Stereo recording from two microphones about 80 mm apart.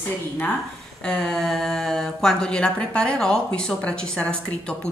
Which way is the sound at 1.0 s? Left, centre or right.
Centre.